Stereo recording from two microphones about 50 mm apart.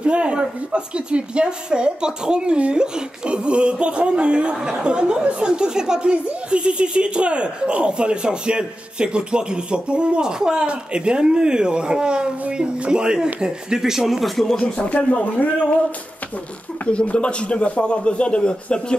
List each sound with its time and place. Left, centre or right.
0.0 s speech: right; by 14.6 s centre
14.6 s a man's voice: left
16.8 s a man's voice: left